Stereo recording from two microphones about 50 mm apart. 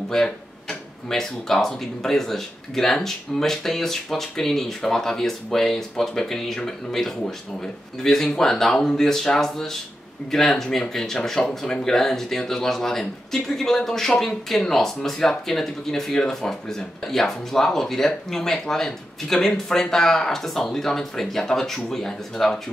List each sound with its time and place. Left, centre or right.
0.1 s speech: centre